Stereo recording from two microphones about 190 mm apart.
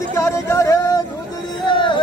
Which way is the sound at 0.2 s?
15° left (ahead or behind).